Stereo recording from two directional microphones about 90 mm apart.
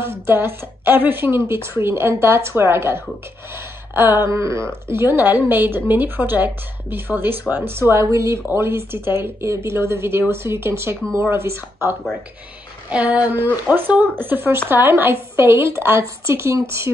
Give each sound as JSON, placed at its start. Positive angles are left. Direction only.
{"t": 0.0, "sound": "a woman's voice", "side_deg": -25}
{"t": 12.9, "sound": "a sound", "side_deg": -15}
{"t": 13.7, "sound": "a woman's voice", "side_deg": -20}